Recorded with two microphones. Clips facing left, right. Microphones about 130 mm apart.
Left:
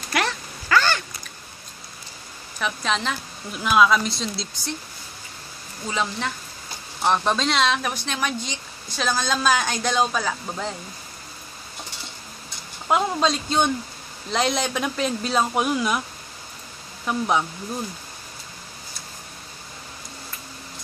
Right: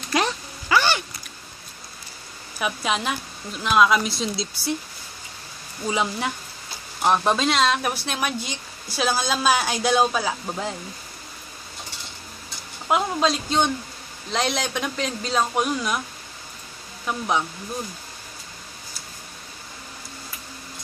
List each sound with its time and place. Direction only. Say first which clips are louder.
0.1 s a sound: right 2 dB; 15° right (ahead or behind)
2.6 s speech: even; 10° right (ahead or behind)
3.5 s speech: even; centre (ahead or behind)
5.9 s speech: right 2 dB; 10° right (ahead or behind)
12.8 s speech: even; centre (ahead or behind)
17.1 s speech: left 3 dB; centre (ahead or behind)